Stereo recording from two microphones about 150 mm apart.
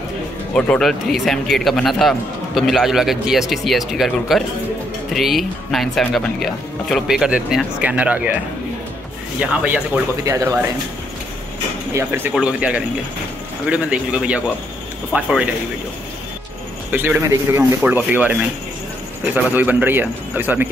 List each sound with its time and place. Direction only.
0.6 s speech: 5° left (ahead or behind); by 8.4 s 10° right (ahead or behind)
9.4 s speech: 10° right (ahead or behind)
10.2 s speech: 20° right (ahead or behind)
11.9 s speech: 15° right (ahead or behind)
16.9 s speech: 10° right (ahead or behind)